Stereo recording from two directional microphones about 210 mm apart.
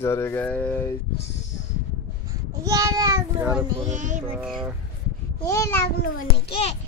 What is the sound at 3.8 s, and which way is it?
Child singing, 35° right (ahead or behind).